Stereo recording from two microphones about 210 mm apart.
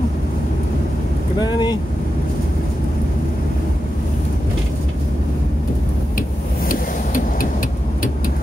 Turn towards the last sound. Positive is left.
turn(degrees=40)  # may be behind; listen again after turning